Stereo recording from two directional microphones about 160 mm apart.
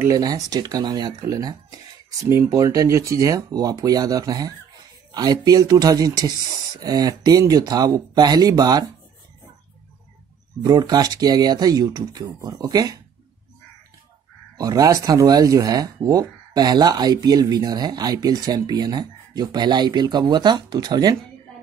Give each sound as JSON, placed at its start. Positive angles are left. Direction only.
{"t": 0.0, "sound": "speech", "side_deg": -20}
{"t": 10.6, "sound": "speech", "side_deg": -25}
{"t": 14.6, "sound": "speech", "side_deg": -20}